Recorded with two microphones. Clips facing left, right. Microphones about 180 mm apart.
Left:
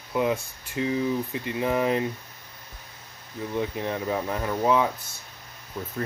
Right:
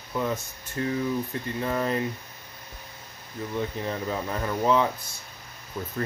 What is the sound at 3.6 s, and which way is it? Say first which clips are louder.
Speech: left 2 dB; 10° left (ahead or behind).